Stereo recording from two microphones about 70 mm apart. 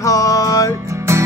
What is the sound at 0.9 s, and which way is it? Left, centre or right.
Music, right.